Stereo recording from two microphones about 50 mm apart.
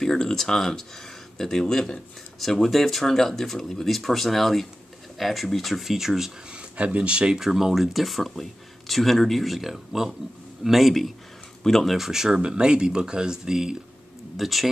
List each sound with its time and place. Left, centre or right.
0.0 s speech: centre
6.5 s speech: right
7.4 s speech: centre